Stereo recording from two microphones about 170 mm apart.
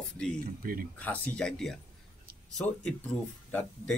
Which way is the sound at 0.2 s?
5° left (ahead or behind).